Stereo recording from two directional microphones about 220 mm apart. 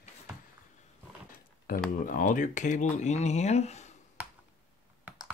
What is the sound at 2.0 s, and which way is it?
Speech, 35° left (ahead or behind).